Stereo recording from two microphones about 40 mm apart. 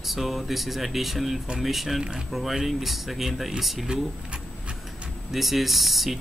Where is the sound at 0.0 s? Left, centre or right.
Centre.